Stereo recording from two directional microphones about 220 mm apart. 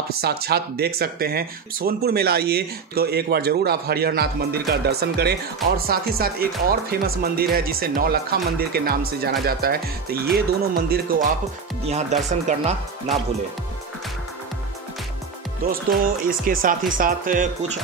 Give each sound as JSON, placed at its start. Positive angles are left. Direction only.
{"t": 0.2, "sound": "speech", "side_deg": -45}
{"t": 11.8, "sound": "speech", "side_deg": -30}
{"t": 16.3, "sound": "speech", "side_deg": -40}